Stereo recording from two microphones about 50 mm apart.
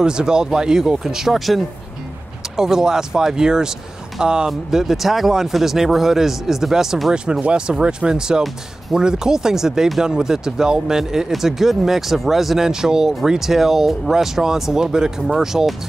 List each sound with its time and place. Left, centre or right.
0.0 s speech: centre
4.5 s speech: centre